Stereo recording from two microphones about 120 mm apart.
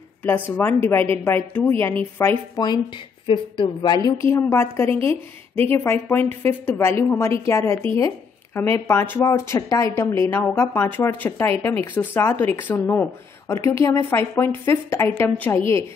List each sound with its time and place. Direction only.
0.2 s a woman's voice: 20° left (ahead or behind)
2.1 s a woman's voice: 30° left (ahead or behind); by 3.9 s 45° left (ahead or behind)
3.9 s a woman's voice: 30° left (ahead or behind)